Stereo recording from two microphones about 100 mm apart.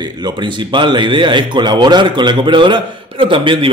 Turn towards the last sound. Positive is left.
turn(degrees=-55)  # may be behind; listen again after turning